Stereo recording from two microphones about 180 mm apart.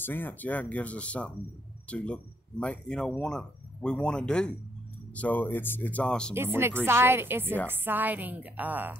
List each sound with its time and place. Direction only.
0.0 s speech: 10° left (ahead or behind)
6.3 s a woman's voice: 15° right (ahead or behind)